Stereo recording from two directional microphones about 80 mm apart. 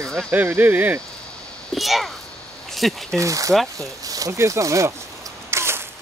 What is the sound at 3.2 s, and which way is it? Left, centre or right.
Speech, right.